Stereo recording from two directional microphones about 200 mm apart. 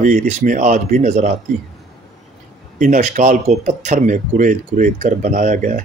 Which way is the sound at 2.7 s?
40° right (ahead or behind).